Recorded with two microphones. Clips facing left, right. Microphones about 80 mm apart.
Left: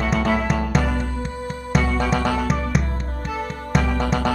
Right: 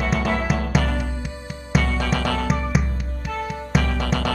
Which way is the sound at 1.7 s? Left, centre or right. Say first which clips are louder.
Left 1 dB; centre.